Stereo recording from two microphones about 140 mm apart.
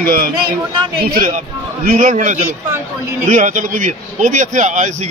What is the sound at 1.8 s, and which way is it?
Speech, 65° right (ahead or behind).